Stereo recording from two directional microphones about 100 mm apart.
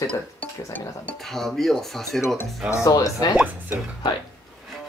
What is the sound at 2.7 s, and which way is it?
Speech, 35° left (ahead or behind).